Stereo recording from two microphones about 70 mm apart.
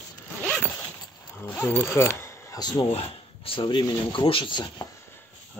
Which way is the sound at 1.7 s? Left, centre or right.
Left.